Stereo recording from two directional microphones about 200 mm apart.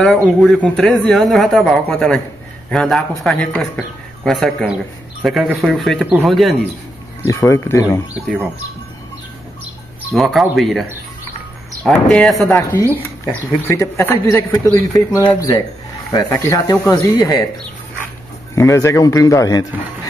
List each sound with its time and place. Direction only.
0.0 s speech: centre (ahead or behind)
7.2 s speech: 15° left (ahead or behind)
10.1 s speech: centre (ahead or behind); by 17.5 s 20° left (ahead or behind)
18.5 s speech: 15° left (ahead or behind)